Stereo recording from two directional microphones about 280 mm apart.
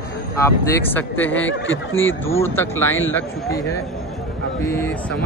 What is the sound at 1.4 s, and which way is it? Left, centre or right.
Speech, left.